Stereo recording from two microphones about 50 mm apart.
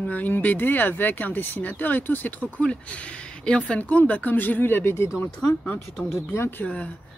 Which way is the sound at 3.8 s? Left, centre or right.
Left.